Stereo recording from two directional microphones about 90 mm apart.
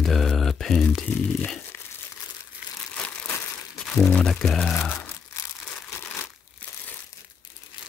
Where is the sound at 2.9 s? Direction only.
10° left (ahead or behind).